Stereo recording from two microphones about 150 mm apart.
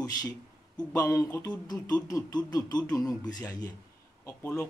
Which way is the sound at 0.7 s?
25° left (ahead or behind).